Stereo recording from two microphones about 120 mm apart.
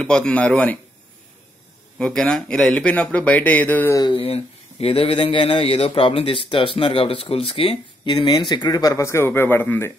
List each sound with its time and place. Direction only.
0.0 s speech: 5° left (ahead or behind)
2.0 s speech: 5° left (ahead or behind)
3.9 s speech: 40° left (ahead or behind); by 9.9 s 20° left (ahead or behind)